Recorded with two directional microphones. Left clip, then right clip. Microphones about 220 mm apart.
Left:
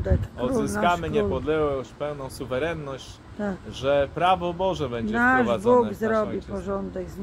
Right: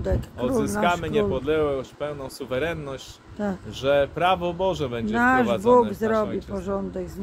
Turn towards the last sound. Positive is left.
turn(degrees=-10)  # may be behind; listen again after turning